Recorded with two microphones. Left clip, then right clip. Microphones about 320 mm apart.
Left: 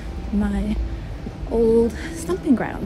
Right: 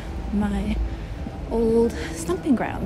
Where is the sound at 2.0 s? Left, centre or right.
Centre.